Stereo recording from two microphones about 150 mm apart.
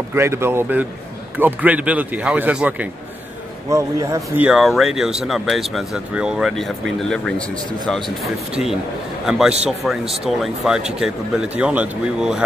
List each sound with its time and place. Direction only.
0.1 s speech: 15° right (ahead or behind)
3.7 s speech: 20° right (ahead or behind)
4.5 s a man's voice: centre (ahead or behind)